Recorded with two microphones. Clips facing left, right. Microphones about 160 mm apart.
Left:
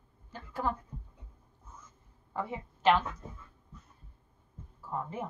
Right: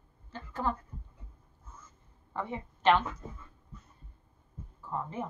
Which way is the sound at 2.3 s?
5° left (ahead or behind).